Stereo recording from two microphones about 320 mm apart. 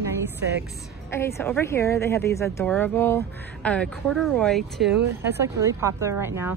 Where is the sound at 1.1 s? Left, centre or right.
Centre.